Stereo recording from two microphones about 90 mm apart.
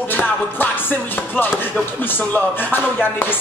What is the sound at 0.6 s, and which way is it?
Speech, 20° left (ahead or behind).